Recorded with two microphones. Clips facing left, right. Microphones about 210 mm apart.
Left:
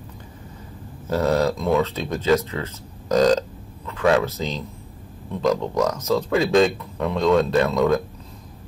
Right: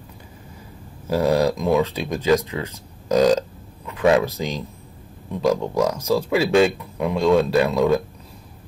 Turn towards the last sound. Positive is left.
turn(degrees=-10)  # may be behind; listen again after turning